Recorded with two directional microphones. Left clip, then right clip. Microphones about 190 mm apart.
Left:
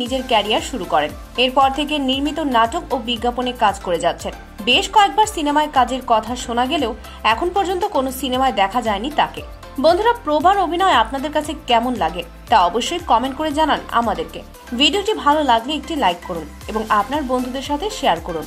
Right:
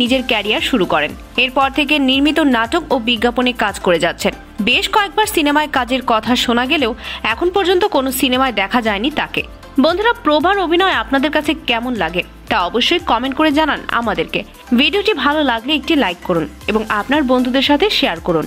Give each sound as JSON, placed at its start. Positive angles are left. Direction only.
{"t": 0.1, "sound": "speech", "side_deg": -10}